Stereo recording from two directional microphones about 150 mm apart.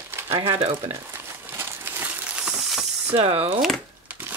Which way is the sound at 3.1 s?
40° right (ahead or behind).